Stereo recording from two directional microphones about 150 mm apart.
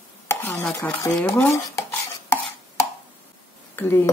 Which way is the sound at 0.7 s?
15° left (ahead or behind).